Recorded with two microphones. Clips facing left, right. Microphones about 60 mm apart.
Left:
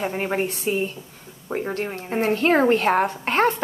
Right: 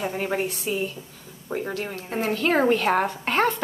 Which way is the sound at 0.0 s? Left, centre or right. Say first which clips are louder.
Left 2 dB; left.